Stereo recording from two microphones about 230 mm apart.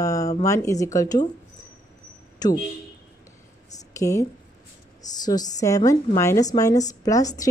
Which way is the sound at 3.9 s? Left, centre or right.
Centre.